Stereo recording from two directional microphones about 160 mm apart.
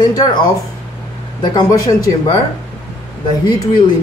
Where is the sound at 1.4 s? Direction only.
25° left (ahead or behind).